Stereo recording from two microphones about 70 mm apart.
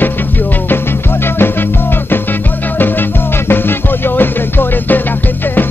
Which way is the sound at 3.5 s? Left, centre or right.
Left.